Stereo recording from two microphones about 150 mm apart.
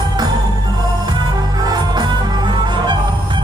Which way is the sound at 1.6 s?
30° right (ahead or behind).